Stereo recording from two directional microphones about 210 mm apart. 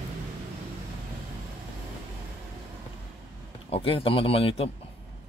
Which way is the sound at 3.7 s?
25° left (ahead or behind).